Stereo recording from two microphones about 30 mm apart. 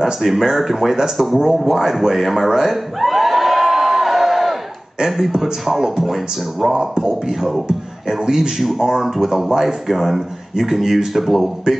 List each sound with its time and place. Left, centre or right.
0.0 s speech: centre
1.8 s a man's voice: centre
2.3 s a sound: centre
5.2 s speech: centre